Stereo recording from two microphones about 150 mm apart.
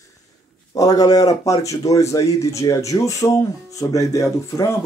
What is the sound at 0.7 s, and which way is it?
Speech, 25° left (ahead or behind).